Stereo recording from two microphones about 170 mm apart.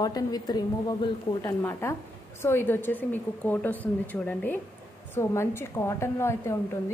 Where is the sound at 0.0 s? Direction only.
25° left (ahead or behind).